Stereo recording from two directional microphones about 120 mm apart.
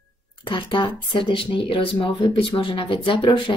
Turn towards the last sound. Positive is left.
turn(degrees=40)  # may be behind; listen again after turning